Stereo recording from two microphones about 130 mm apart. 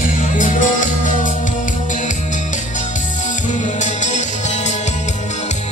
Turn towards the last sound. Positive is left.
turn(degrees=65)  # may be behind; listen again after turning